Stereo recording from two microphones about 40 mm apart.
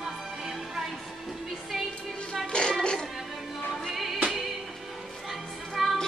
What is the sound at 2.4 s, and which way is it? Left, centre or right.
Music, left.